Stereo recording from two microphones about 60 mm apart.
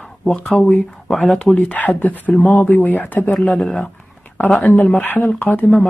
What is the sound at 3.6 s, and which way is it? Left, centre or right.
Speech, centre.